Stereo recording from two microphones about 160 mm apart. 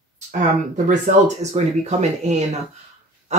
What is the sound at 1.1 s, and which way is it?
Speech, 55° right (ahead or behind).